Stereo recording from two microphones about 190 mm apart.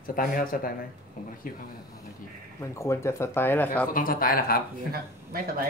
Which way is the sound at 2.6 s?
15° left (ahead or behind).